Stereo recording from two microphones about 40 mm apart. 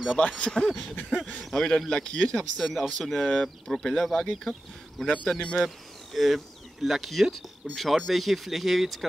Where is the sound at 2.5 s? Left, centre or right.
Centre.